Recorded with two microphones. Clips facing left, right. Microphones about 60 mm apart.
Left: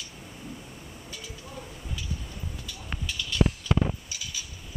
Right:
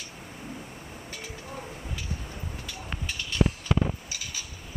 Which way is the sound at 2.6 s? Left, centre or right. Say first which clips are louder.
Even; right.